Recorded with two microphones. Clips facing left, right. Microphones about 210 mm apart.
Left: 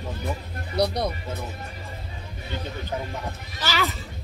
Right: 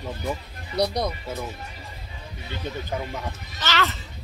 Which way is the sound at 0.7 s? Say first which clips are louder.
Even; 30° left (ahead or behind).